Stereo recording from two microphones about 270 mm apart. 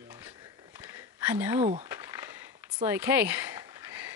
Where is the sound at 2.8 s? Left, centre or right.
Centre.